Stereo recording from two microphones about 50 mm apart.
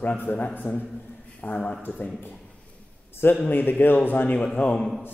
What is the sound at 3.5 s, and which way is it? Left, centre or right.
A man's voice, left.